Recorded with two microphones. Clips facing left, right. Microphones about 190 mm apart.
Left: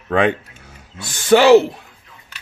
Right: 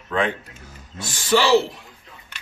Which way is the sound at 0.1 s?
70° left (ahead or behind).